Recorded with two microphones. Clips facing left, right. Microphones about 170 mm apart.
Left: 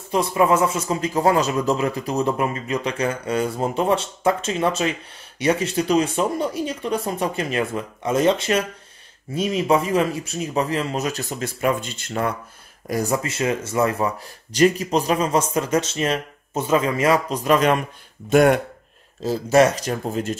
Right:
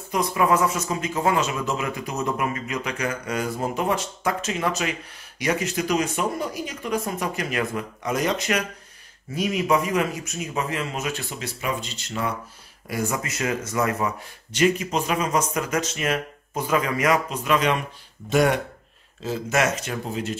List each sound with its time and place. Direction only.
0.1 s speech: 25° left (ahead or behind); by 12.4 s 55° left (ahead or behind)
12.8 s speech: 40° left (ahead or behind)
19.2 s speech: 35° left (ahead or behind)